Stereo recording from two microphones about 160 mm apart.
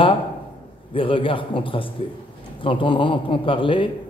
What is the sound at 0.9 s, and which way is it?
A man's voice, 35° left (ahead or behind).